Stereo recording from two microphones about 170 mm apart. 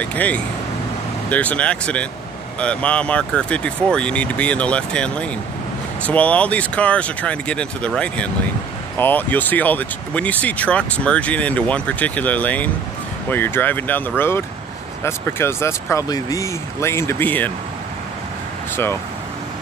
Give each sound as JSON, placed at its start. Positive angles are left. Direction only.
{"t": 0.0, "sound": "speech", "side_deg": 10}